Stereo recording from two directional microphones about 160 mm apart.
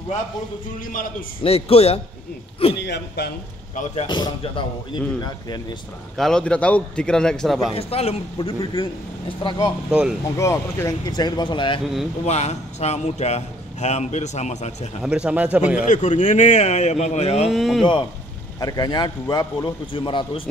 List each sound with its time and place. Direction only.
1.4 s a man's voice: 40° left (ahead or behind)
2.8 s a man's voice: 90° left
3.7 s a man's voice: 45° left (ahead or behind)
4.1 s a man's voice: 30° left (ahead or behind)
6.1 s a man's voice: 5° left (ahead or behind)
7.7 s a man's voice: 40° left (ahead or behind)
9.8 s a man's voice: 5° right (ahead or behind)
10.3 s a man's voice: 15° left (ahead or behind)
12.3 s a man's voice: 45° left (ahead or behind)
15.0 s speech: 5° right (ahead or behind)
15.9 s a man's voice: 50° left (ahead or behind)
17.5 s a man's voice: centre (ahead or behind)
18.6 s a man's voice: 25° left (ahead or behind)